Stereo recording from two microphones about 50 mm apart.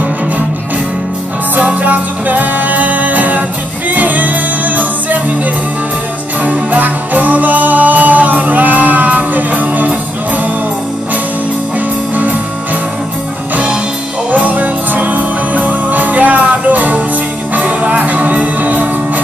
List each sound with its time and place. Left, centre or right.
1.6 s music: right
6.4 s music: right
14.3 s music: right